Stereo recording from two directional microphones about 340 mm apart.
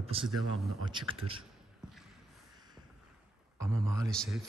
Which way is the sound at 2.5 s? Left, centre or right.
Centre.